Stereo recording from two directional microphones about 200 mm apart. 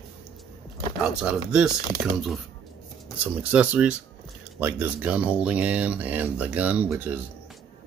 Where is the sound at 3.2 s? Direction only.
5° right (ahead or behind).